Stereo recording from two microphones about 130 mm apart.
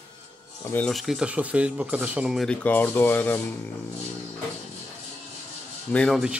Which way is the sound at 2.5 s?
10° left (ahead or behind).